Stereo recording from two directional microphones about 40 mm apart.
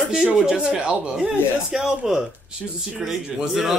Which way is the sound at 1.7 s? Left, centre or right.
Centre.